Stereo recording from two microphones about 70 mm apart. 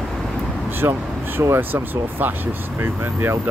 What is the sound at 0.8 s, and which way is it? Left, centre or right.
Speech, right.